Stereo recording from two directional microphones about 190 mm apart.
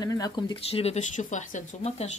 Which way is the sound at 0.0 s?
20° left (ahead or behind).